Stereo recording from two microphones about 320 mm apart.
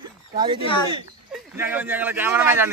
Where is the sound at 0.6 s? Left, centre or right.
Centre.